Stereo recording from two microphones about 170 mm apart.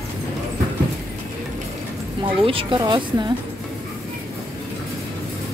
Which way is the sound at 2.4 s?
30° right (ahead or behind).